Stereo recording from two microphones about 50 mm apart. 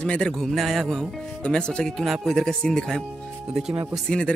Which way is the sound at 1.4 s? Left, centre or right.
Left.